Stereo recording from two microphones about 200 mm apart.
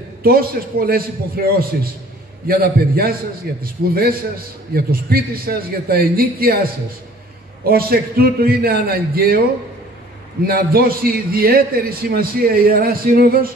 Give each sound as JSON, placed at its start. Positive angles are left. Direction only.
{"t": 0.2, "sound": "a man's voice", "side_deg": -50}
{"t": 7.6, "sound": "a man's voice", "side_deg": -50}
{"t": 10.4, "sound": "a man's voice", "side_deg": -50}